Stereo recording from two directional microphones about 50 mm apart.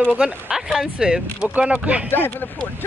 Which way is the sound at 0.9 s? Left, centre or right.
Centre.